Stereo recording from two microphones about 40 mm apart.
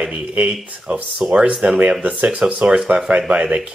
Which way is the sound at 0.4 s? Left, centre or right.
Right.